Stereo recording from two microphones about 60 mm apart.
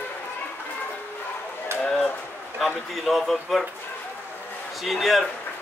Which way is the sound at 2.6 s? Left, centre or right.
Centre.